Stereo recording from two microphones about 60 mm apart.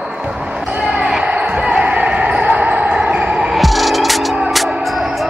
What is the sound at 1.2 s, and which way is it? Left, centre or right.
Basketball bounce, centre.